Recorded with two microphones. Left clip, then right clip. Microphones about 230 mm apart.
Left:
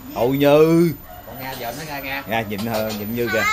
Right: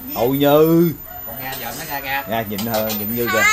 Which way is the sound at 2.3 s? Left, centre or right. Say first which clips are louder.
Right 1 dB; centre.